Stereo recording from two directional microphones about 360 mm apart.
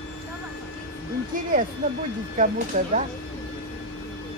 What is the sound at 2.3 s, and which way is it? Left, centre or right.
Speech, right.